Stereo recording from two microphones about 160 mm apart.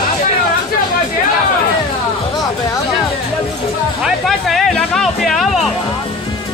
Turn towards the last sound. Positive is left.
turn(degrees=0)  # may be behind; listen again after turning